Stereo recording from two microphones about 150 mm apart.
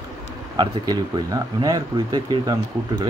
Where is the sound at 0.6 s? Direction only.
30° right (ahead or behind).